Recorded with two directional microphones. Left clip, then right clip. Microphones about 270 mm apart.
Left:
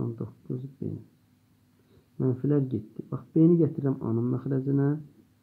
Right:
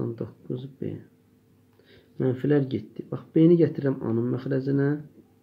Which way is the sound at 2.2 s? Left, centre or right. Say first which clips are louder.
Right 4 dB; centre.